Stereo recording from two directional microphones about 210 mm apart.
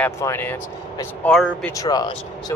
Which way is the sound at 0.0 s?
10° left (ahead or behind).